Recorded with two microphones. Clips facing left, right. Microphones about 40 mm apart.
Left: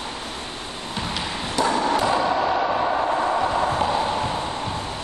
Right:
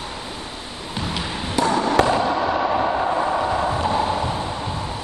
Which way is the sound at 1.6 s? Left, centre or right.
Centre.